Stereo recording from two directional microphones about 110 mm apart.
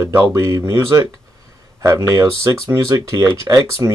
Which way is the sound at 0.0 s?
25° right (ahead or behind).